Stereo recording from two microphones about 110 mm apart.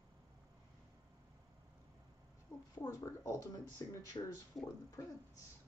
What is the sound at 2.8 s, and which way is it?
A woman's voice, 30° left (ahead or behind).